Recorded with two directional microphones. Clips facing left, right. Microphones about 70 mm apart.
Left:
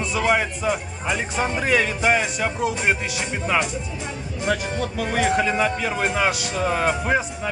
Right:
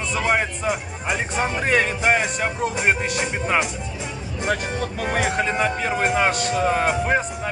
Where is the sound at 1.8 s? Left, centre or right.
Right.